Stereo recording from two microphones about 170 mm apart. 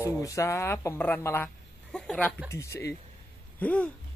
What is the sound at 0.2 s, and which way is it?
Speech, 20° left (ahead or behind).